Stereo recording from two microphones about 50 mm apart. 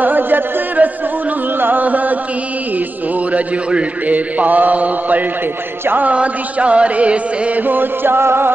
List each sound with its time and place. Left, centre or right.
0.0 s music: right
1.6 s a man's voice: right
3.3 s a man's voice: right
6.1 s music: right
7.6 s music: right